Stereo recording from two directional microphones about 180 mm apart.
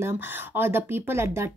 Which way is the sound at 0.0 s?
10° right (ahead or behind).